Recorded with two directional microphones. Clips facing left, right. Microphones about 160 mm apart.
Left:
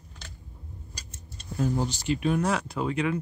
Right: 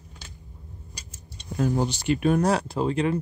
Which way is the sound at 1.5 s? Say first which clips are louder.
Right 3 dB; 75° right (ahead or behind).